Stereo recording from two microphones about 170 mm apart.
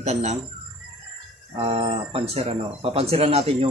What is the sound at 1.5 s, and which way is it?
Speech, 35° right (ahead or behind).